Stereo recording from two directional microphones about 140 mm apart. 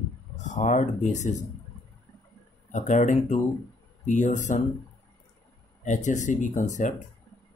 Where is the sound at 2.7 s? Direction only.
60° left (ahead or behind).